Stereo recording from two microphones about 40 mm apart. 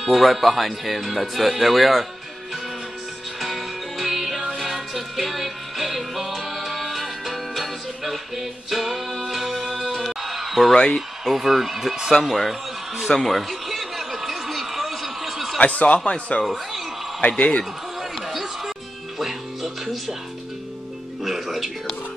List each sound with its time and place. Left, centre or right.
0.0 s speech: centre
3.3 s music: centre
10.7 s speech: centre
11.0 s speech: centre
13.2 s a sound: centre
15.6 s speech: left
16.1 s speech: left
18.2 s music: centre
21.2 s speech: centre